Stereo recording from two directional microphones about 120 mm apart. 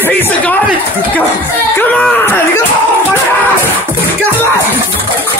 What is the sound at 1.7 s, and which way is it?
Speech, 15° left (ahead or behind).